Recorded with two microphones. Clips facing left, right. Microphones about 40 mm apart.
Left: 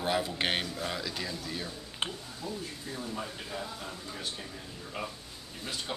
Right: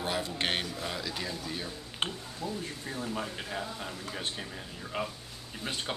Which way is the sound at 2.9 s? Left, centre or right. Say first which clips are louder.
Right 2 dB; right.